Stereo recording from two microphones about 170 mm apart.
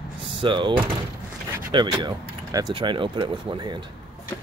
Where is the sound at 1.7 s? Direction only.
25° right (ahead or behind).